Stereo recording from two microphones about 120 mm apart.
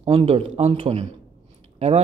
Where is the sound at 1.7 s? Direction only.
60° right (ahead or behind).